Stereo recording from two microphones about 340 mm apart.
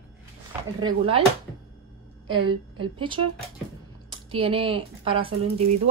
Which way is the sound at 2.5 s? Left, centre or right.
Centre.